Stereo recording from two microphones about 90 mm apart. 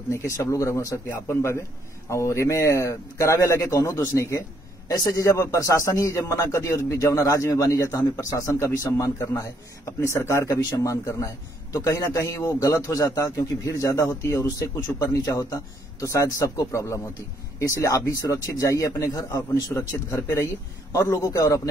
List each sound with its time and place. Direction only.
0.1 s a man's voice: 30° left (ahead or behind)
4.8 s a man's voice: 40° left (ahead or behind)